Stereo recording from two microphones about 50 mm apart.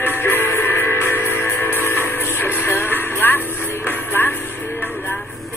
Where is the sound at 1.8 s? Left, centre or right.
Left.